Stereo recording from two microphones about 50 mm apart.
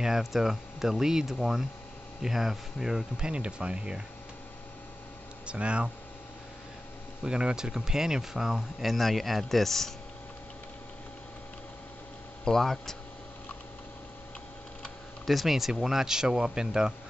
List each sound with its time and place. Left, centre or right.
0.0 s speech: centre
5.5 s speech: right
7.2 s speech: centre
12.4 s speech: centre
15.2 s speech: centre